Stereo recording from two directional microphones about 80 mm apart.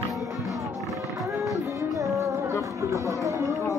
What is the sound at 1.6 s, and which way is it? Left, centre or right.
Music, right.